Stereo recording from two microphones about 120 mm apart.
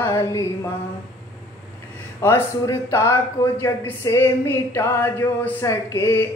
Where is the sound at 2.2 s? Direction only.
25° left (ahead or behind).